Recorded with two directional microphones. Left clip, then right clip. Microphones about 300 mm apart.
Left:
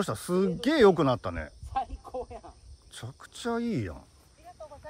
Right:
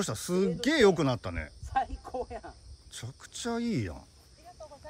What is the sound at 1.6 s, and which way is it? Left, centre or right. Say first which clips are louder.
Cricket: right 3 dB; right.